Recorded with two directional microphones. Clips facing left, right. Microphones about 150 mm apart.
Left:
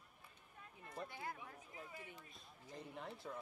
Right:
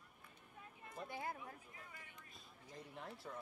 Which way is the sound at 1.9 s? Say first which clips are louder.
Left 5 dB; 25° left (ahead or behind).